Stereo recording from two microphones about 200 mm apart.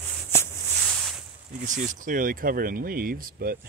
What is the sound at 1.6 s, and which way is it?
Speech, 40° right (ahead or behind).